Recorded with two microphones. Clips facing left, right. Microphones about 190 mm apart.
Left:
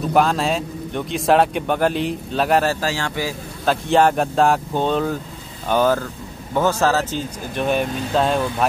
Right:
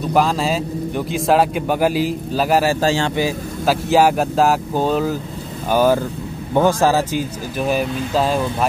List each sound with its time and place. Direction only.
0.0 s a man's voice: centre (ahead or behind)
2.8 s a man's voice: 25° right (ahead or behind)
3.6 s a man's voice: 5° right (ahead or behind)